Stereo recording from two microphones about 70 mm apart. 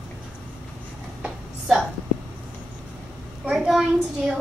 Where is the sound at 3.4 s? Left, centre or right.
Centre.